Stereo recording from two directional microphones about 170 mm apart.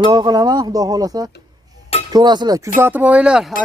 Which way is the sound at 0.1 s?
25° right (ahead or behind).